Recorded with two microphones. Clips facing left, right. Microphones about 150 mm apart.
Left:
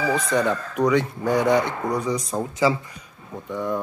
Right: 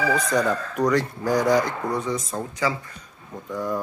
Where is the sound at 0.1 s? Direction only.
Centre (ahead or behind).